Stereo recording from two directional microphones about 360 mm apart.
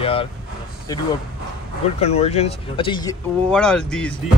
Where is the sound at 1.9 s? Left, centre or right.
Centre.